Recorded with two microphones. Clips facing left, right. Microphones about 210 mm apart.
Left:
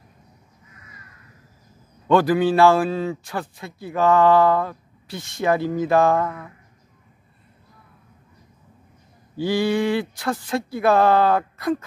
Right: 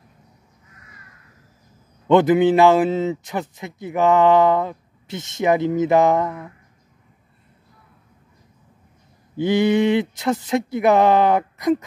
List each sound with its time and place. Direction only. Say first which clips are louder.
2.0 s a man's voice: right 3 dB; 20° right (ahead or behind)
9.4 s a man's voice: right 4 dB; 20° right (ahead or behind)